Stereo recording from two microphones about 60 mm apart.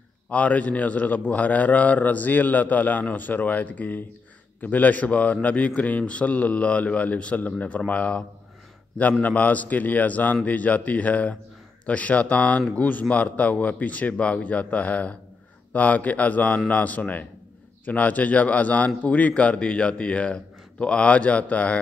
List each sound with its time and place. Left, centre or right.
0.3 s a man's voice: left
9.2 s a man's voice: left